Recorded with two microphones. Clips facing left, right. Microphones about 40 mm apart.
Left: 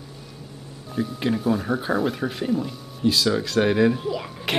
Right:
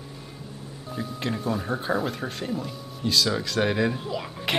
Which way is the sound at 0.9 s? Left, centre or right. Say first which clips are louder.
Left 6 dB; centre.